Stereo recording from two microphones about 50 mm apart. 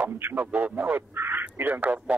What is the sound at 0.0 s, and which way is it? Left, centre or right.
Speech, right.